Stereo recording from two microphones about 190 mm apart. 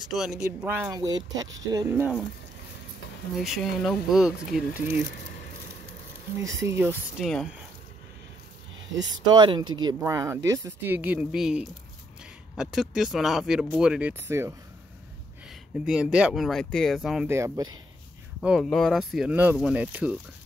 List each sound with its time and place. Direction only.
0.0 s speech: centre (ahead or behind)
3.3 s speech: centre (ahead or behind)
6.8 s speech: 10° right (ahead or behind)
8.9 s speech: 25° right (ahead or behind)
15.8 s speech: 5° right (ahead or behind)
17.3 s speech: 15° right (ahead or behind)
18.4 s speech: centre (ahead or behind)